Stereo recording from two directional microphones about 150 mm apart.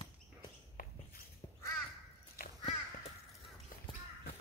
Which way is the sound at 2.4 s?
75° left (ahead or behind).